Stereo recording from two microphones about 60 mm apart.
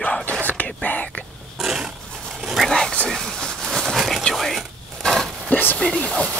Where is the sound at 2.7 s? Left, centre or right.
Centre.